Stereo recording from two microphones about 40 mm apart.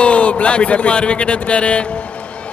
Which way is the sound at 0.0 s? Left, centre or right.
Left.